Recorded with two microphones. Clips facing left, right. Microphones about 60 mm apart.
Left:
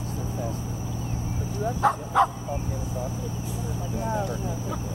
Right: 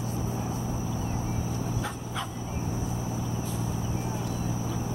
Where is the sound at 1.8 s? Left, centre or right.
Left.